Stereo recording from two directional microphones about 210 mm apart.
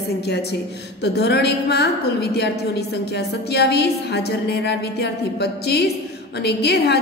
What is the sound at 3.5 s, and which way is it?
A woman's voice, 50° left (ahead or behind).